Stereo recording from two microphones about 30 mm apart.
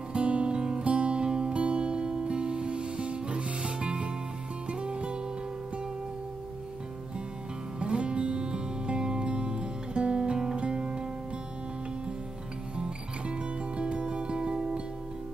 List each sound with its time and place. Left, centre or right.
0.1 s music: right
7.8 s music: right
12.7 s music: right